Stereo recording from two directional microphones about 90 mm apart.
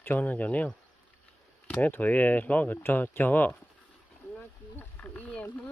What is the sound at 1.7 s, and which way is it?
Speech, 20° left (ahead or behind).